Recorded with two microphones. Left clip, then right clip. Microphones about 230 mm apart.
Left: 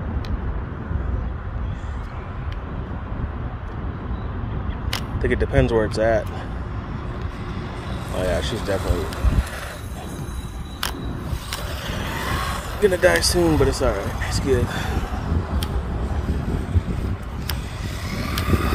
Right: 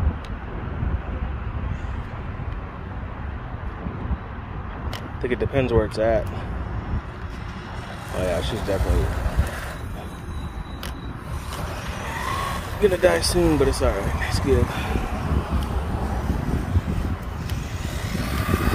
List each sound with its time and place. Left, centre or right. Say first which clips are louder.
5.2 s speech: left 2 dB; centre
8.2 s speech: left 1 dB; centre
11.9 s vehicle: left 1 dB; centre
13.4 s speech: left 1 dB; centre
18.1 s vehicle: left 2 dB; right